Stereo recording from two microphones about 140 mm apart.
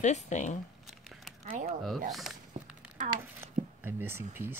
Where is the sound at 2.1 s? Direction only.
Centre (ahead or behind).